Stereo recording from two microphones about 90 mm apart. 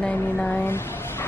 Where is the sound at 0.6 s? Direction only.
25° left (ahead or behind).